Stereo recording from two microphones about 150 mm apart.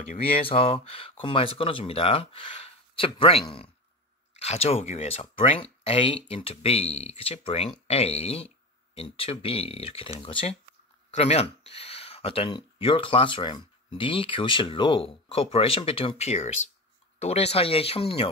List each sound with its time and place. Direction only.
0.5 s speech: 40° left (ahead or behind)